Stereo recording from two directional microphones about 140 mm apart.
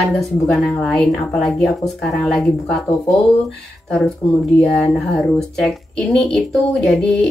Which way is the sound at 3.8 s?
5° left (ahead or behind).